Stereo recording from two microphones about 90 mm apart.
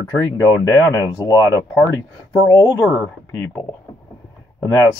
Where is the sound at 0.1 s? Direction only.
40° left (ahead or behind).